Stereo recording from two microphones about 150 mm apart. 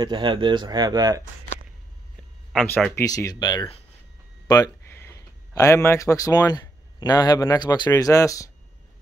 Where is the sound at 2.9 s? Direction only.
25° left (ahead or behind).